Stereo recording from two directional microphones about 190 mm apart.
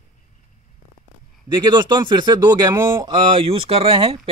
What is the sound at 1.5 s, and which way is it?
Speech, 25° right (ahead or behind).